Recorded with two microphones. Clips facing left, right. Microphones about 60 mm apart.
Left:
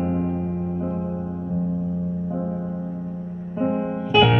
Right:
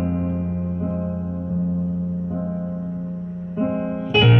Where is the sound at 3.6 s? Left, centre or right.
Centre.